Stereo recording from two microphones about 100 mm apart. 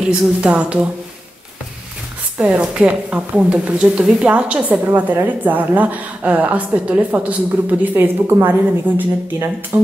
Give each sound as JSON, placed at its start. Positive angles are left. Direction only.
{"t": 0.4, "sound": "a woman's voice", "side_deg": -10}
{"t": 2.3, "sound": "a woman's voice", "side_deg": -10}